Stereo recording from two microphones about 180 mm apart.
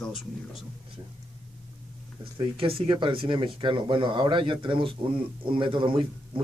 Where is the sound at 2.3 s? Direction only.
30° right (ahead or behind).